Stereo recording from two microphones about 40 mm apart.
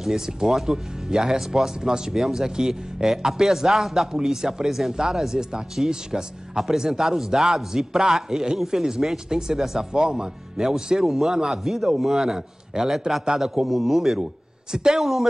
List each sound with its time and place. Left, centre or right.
0.0 s a man's voice: centre
14.7 s speech: centre